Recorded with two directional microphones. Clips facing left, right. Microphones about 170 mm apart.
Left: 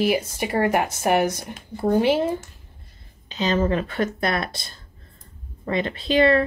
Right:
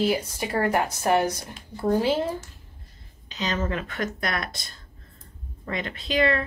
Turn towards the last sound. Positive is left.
turn(degrees=30)  # may be behind; listen again after turning